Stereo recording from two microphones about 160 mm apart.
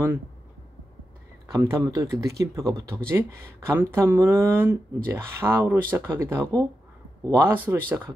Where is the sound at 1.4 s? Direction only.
20° right (ahead or behind).